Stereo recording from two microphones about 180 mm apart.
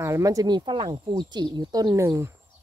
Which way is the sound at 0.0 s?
20° right (ahead or behind).